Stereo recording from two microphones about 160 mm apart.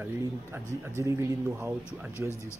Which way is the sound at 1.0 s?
20° right (ahead or behind).